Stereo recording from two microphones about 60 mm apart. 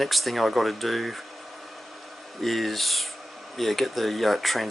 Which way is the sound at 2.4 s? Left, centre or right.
Centre.